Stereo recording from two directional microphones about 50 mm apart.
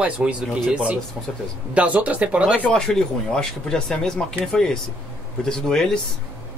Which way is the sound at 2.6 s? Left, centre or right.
Centre.